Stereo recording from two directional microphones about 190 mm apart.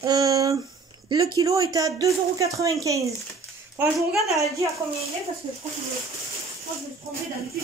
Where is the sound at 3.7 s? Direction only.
Centre (ahead or behind).